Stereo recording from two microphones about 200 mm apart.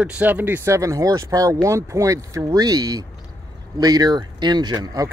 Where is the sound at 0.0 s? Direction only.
5° right (ahead or behind).